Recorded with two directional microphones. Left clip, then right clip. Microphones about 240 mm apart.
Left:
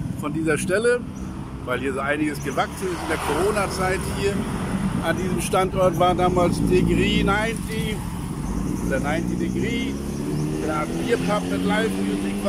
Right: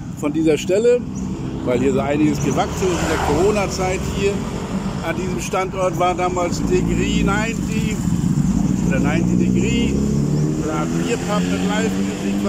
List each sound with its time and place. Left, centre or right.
0.5 s speech: centre
8.9 s speech: centre
11.1 s speech: centre